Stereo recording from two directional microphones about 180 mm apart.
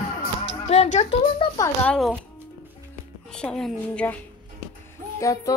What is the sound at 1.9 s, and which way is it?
Speech, centre (ahead or behind).